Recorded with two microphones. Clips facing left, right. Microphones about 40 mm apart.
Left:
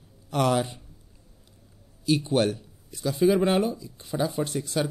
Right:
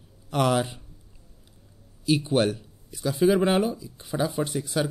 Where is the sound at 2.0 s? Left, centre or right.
Centre.